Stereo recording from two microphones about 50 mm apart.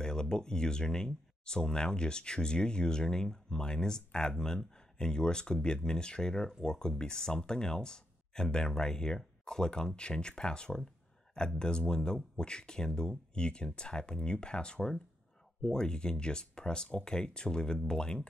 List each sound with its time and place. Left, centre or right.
0.0 s speech: centre